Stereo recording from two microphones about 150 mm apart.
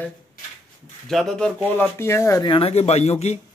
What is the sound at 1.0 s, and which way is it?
Speech, 5° left (ahead or behind).